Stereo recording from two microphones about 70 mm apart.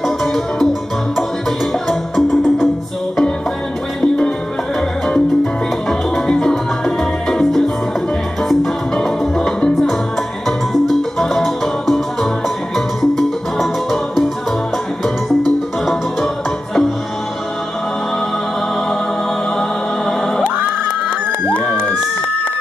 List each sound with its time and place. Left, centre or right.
0.0 s music: centre
1.9 s music: centre
4.7 s salsa music: centre
8.5 s music: centre
15.4 s music: centre
20.1 s choir: centre
20.5 s crowd: right